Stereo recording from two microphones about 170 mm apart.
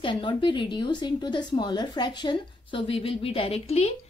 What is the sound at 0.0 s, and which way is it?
A woman's voice, 30° left (ahead or behind).